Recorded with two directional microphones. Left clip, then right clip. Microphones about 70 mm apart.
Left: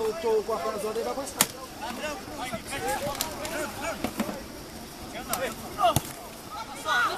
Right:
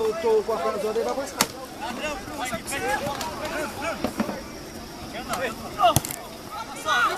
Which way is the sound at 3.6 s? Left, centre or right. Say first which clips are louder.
Right 3 dB; left.